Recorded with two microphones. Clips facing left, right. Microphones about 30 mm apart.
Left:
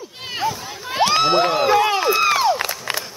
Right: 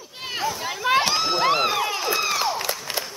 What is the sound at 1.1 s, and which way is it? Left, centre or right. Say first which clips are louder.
Crowd: left 7 dB; left.